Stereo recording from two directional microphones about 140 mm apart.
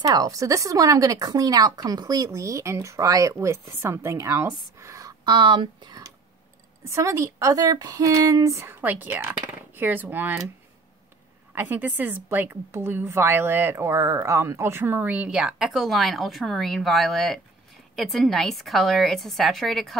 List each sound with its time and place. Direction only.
0.0 s a woman's voice: 25° right (ahead or behind)
11.5 s a woman's voice: 15° right (ahead or behind)